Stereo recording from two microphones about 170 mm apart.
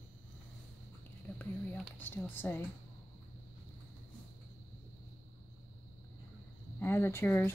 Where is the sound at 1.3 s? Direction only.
10° left (ahead or behind).